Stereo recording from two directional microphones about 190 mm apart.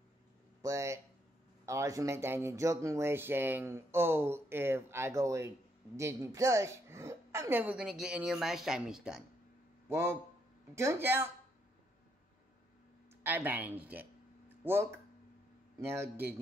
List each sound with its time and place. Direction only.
0.6 s a woman's voice: 15° right (ahead or behind)
9.8 s a man's voice: 15° right (ahead or behind)
13.2 s speech: 10° right (ahead or behind)
14.5 s a sound: 10° right (ahead or behind)
15.8 s speech: 15° right (ahead or behind)